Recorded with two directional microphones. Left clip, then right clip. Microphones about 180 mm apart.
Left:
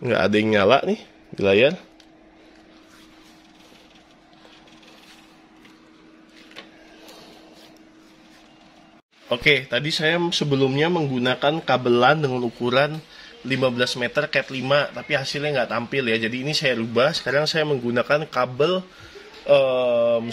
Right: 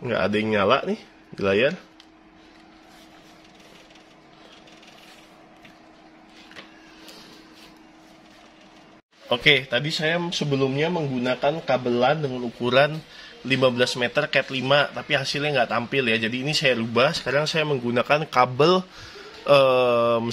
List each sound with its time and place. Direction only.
0.0 s speech: 25° left (ahead or behind)
9.3 s speech: centre (ahead or behind); by 12.4 s 30° left (ahead or behind)
12.5 s speech: 5° left (ahead or behind); by 18.9 s 25° right (ahead or behind)
19.4 s speech: 35° right (ahead or behind)